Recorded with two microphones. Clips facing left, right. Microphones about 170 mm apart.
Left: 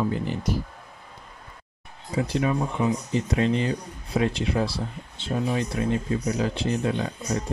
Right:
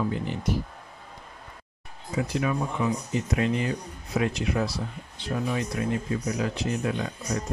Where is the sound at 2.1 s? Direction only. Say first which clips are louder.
Left 2 dB; 30° left (ahead or behind).